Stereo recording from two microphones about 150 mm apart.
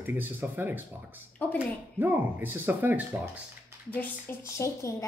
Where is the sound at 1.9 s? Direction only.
15° right (ahead or behind).